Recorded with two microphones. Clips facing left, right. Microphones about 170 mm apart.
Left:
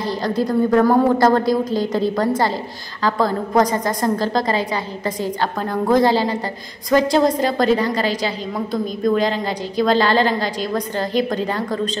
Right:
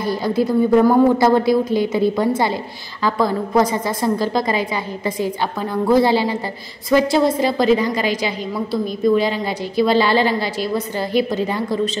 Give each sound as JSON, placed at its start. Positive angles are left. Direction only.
{"t": 0.0, "sound": "a woman's voice", "side_deg": -10}